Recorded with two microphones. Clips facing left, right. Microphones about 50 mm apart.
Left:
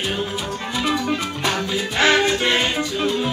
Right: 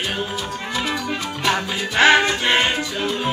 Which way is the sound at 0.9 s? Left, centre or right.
Right.